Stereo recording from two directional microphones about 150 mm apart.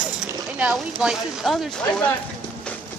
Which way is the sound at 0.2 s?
5° right (ahead or behind).